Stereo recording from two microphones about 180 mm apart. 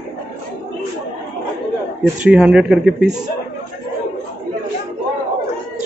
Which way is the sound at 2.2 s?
5° right (ahead or behind).